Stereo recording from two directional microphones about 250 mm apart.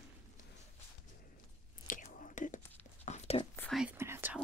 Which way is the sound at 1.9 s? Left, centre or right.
Left.